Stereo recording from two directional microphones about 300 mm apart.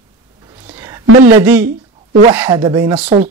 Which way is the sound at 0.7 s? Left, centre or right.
Centre.